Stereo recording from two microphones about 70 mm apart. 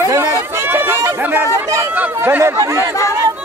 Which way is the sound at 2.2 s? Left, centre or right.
Right.